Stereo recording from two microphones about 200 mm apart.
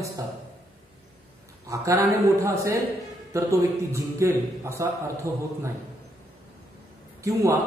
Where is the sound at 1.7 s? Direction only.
15° right (ahead or behind).